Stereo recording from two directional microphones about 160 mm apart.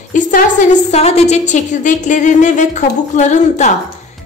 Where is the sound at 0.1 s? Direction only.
55° left (ahead or behind).